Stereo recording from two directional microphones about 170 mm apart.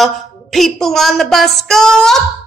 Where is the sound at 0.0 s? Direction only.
Centre (ahead or behind).